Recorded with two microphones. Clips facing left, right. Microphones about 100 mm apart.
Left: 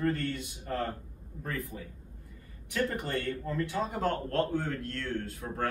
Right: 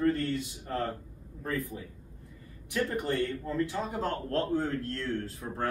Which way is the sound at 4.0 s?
30° right (ahead or behind).